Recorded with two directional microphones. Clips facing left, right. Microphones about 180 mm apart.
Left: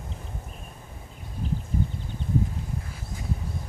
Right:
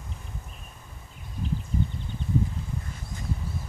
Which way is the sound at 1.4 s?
40° left (ahead or behind).